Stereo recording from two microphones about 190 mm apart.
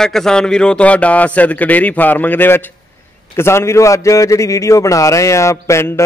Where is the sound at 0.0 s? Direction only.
5° left (ahead or behind).